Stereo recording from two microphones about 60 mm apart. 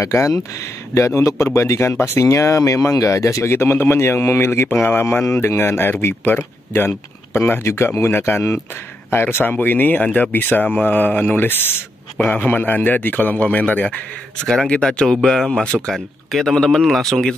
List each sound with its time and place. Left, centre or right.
0.0 s a man's voice: left; by 15.9 s centre
15.9 s speech: centre